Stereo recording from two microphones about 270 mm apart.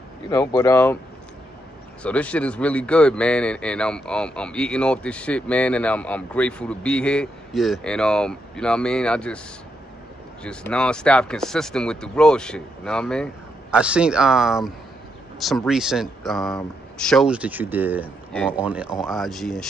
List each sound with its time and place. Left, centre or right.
0.3 s speech: centre
2.0 s speech: centre
10.4 s speech: centre
18.3 s speech: centre
18.6 s speech: centre